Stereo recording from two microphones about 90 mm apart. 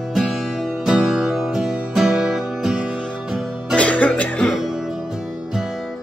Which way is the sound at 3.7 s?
15° left (ahead or behind).